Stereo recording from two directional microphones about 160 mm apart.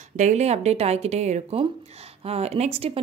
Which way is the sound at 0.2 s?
45° right (ahead or behind).